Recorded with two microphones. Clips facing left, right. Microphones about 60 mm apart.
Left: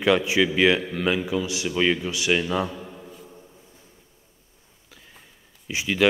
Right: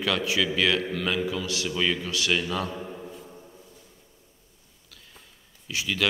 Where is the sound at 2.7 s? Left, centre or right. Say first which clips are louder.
Right 2 dB; centre.